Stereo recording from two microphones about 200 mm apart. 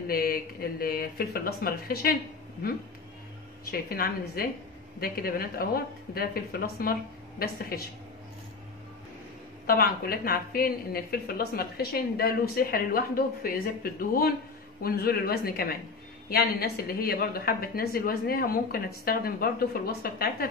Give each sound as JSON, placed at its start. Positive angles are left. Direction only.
{"t": 0.1, "sound": "speech", "side_deg": 45}
{"t": 3.9, "sound": "speech", "side_deg": 50}
{"t": 9.7, "sound": "speech", "side_deg": 50}